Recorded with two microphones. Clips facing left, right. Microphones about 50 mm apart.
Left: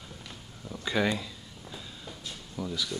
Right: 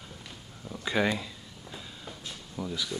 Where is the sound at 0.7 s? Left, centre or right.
Centre.